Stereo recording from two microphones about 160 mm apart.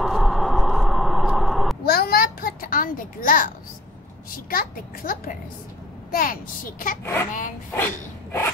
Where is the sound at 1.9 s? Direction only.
70° left (ahead or behind).